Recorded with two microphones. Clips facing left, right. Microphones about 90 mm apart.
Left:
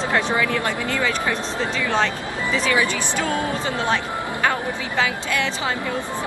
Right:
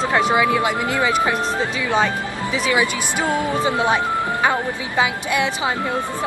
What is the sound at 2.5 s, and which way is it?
Speech, 15° right (ahead or behind).